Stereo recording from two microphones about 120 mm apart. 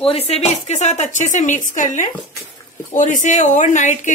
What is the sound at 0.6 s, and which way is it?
Speech, 70° left (ahead or behind).